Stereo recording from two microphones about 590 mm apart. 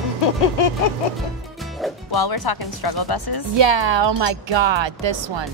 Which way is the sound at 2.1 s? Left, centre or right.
Left.